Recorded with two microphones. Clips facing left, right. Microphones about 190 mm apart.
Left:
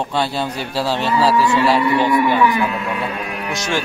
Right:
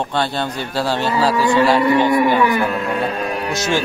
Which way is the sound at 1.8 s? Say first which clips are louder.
Right 2 dB; 40° right (ahead or behind).